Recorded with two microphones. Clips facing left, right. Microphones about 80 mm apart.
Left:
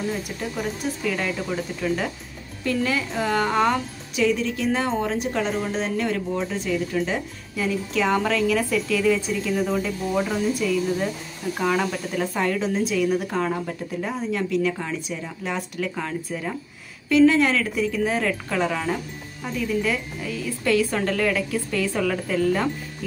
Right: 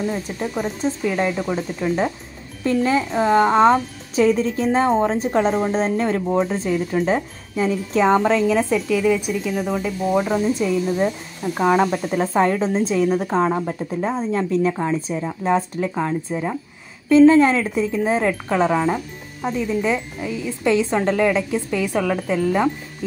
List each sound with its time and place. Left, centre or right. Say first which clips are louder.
0.1 s speech: right 4 dB; right